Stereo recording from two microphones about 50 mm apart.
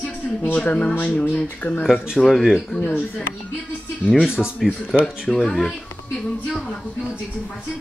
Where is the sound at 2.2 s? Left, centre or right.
Centre.